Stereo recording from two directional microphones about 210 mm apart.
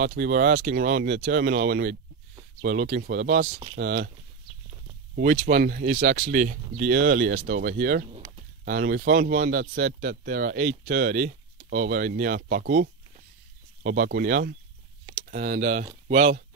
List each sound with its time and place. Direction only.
0.1 s speech: 40° right (ahead or behind)
5.1 s speech: 40° right (ahead or behind)
6.9 s speech: 50° right (ahead or behind)
15.2 s speech: 40° right (ahead or behind)